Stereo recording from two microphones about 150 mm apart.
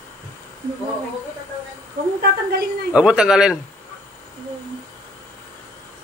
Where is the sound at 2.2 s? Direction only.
90° right.